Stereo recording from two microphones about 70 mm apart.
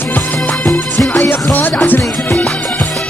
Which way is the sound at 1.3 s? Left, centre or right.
Left.